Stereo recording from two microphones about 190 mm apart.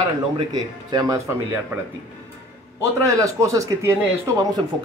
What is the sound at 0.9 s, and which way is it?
Speech, 20° right (ahead or behind).